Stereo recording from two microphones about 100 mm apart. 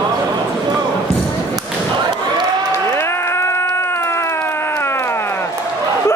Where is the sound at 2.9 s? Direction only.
25° left (ahead or behind).